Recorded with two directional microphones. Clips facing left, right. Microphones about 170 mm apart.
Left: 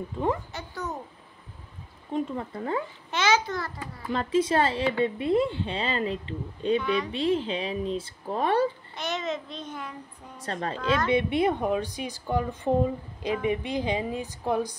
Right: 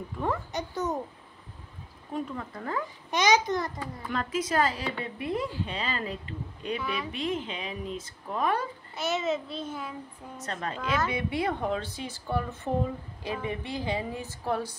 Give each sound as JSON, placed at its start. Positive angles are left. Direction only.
{"t": 0.5, "sound": "babbling", "side_deg": -20}
{"t": 2.1, "sound": "speech", "side_deg": 25}
{"t": 3.1, "sound": "a child's voice", "side_deg": -15}
{"t": 4.1, "sound": "speech", "side_deg": 30}
{"t": 6.8, "sound": "a child's voice", "side_deg": -5}
{"t": 7.1, "sound": "a woman's voice", "side_deg": 30}
{"t": 8.9, "sound": "a child's voice", "side_deg": -5}
{"t": 10.4, "sound": "a woman's voice", "side_deg": 30}